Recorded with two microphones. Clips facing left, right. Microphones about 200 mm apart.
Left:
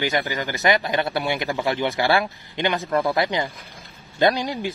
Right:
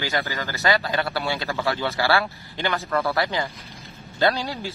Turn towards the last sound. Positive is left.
turn(degrees=15)  # may be behind; listen again after turning